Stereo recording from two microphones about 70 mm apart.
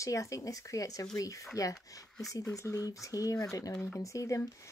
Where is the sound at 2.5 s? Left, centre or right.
Left.